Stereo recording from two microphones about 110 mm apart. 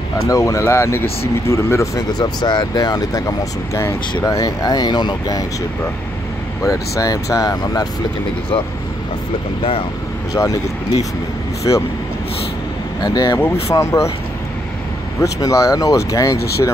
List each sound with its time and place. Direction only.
0.3 s speech: 30° left (ahead or behind)
6.6 s speech: 30° left (ahead or behind)
9.6 s speech: 60° left (ahead or behind)
10.3 s speech: 30° left (ahead or behind)
13.0 s speech: 40° left (ahead or behind)
13.7 s speech: 25° left (ahead or behind)
15.1 s speech: 30° left (ahead or behind)